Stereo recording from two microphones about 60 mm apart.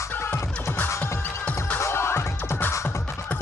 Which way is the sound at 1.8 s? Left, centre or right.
Left.